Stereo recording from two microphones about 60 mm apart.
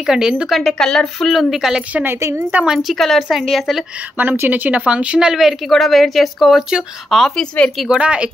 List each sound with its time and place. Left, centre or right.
0.0 s speech: centre
0.5 s a woman's voice: centre
2.0 s a woman's voice: right
2.6 s a woman's voice: centre
4.2 s a woman's voice: right; by 7.3 s centre
7.3 s speech: centre
7.9 s speech: centre